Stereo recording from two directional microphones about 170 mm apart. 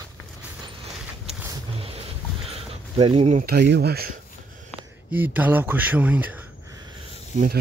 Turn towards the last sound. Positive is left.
turn(degrees=-45)  # may be behind; listen again after turning